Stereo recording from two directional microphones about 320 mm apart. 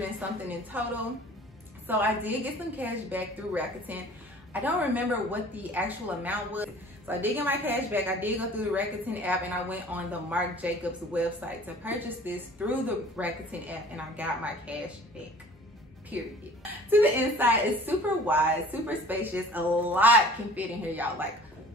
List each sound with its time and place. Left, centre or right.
0.7 s a woman's voice: centre
16.1 s a woman's voice: centre